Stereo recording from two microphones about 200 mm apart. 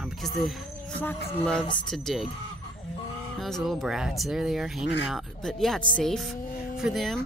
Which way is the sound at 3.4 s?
Centre (ahead or behind).